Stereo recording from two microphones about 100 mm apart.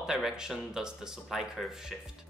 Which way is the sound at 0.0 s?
5° right (ahead or behind).